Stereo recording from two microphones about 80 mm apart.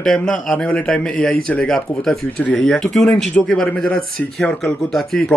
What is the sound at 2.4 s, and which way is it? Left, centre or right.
A man's voice, centre.